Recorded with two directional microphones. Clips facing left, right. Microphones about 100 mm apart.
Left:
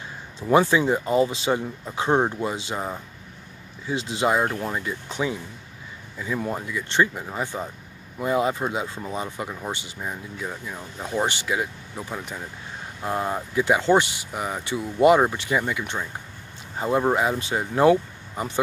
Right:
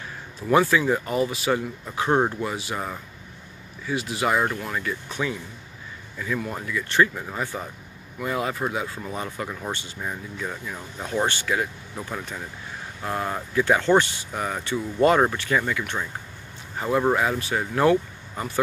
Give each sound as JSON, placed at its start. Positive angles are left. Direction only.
{"t": 0.5, "sound": "speech", "side_deg": 25}